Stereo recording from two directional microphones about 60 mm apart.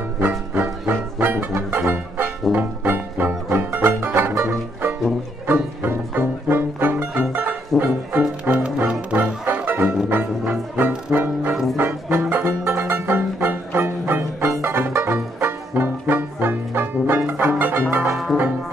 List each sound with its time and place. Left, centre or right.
0.2 s music: right
1.5 s music: right
2.5 s music: right
15.7 s music: right
18.1 s music: centre